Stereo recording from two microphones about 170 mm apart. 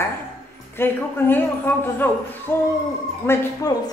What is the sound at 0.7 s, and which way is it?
A woman's voice, 15° left (ahead or behind).